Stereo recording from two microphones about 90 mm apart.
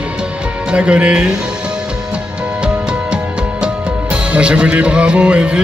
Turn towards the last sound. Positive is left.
turn(degrees=-15)  # may be behind; listen again after turning